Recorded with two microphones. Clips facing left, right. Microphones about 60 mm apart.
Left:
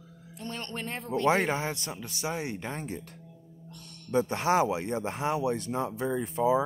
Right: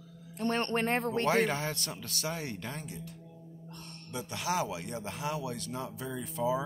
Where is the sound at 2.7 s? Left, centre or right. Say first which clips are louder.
Left 6 dB; left.